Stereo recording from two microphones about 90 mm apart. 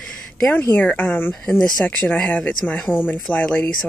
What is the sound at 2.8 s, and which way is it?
Speech, 20° left (ahead or behind).